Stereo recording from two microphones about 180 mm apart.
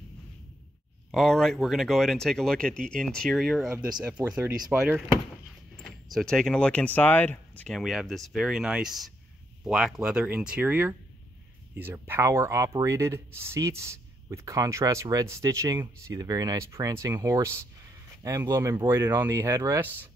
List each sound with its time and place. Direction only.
1.1 s speech: centre (ahead or behind)
6.1 s speech: 5° left (ahead or behind); by 20.1 s 15° right (ahead or behind)